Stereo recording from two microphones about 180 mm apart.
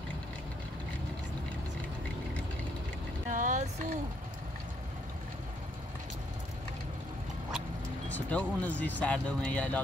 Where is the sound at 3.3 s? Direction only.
45° right (ahead or behind).